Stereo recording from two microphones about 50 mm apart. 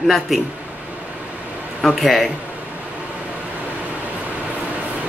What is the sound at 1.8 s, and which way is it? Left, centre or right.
Speech, centre.